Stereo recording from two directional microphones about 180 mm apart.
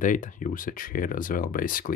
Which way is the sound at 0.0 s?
45° left (ahead or behind).